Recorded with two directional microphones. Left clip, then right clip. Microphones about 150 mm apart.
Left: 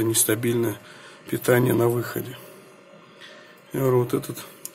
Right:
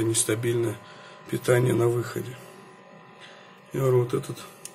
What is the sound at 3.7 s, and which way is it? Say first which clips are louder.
Speech: left 2 dB; 25° left (ahead or behind).